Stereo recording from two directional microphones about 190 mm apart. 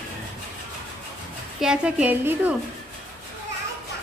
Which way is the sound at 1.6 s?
5° right (ahead or behind).